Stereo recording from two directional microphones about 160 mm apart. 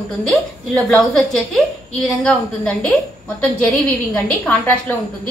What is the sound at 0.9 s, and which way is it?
A woman's voice, 5° left (ahead or behind).